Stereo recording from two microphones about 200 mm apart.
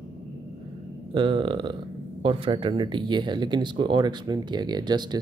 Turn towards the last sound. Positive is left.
turn(degrees=-20)  # may be behind; listen again after turning